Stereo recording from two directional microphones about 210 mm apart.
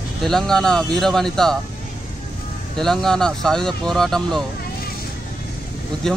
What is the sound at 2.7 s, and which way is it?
Speech, centre (ahead or behind).